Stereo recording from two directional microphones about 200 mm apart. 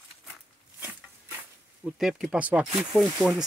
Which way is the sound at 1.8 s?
Centre (ahead or behind).